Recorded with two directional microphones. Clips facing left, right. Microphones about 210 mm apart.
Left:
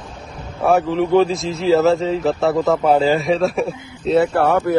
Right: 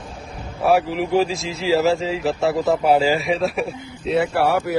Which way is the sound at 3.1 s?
35° left (ahead or behind).